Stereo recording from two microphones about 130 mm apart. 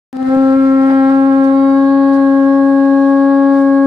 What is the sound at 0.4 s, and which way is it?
Livestock, 25° right (ahead or behind).